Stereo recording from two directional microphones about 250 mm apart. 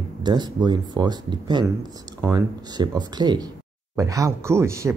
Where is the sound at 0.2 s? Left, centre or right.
Centre.